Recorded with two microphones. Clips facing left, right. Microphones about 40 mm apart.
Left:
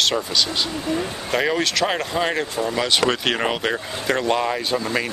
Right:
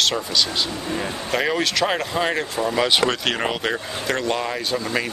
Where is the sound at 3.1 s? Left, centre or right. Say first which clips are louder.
Left 2 dB; centre.